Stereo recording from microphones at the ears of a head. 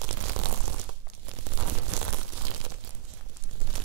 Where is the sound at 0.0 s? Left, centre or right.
Right.